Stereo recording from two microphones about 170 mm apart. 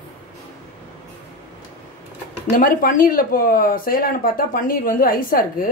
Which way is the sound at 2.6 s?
55° left (ahead or behind).